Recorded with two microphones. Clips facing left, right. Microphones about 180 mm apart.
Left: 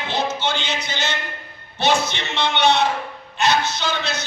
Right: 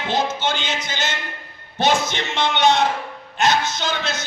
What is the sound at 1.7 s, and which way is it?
A man's voice, 45° right (ahead or behind).